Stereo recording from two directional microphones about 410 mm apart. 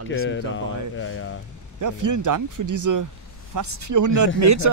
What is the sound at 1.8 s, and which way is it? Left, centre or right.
Speech, right.